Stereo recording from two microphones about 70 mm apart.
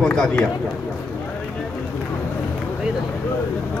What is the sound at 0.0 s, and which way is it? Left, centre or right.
Speech, centre.